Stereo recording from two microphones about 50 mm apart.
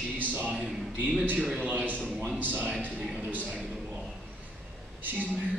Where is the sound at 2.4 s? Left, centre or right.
Right.